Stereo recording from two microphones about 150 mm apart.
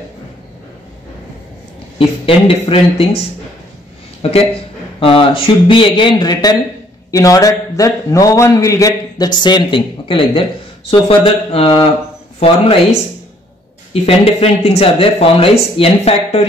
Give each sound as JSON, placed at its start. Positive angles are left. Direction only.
{"t": 2.0, "sound": "speech", "side_deg": 40}
{"t": 4.2, "sound": "a man's voice", "side_deg": 40}
{"t": 14.0, "sound": "speech", "side_deg": 40}